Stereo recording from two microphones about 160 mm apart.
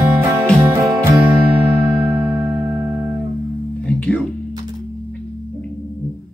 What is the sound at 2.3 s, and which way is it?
Music, 15° right (ahead or behind).